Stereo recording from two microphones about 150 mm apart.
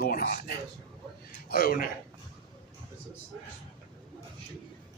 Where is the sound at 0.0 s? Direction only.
80° left.